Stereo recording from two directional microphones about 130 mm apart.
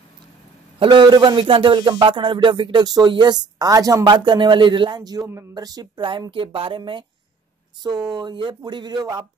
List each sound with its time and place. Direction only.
0.7 s speech: 35° right (ahead or behind)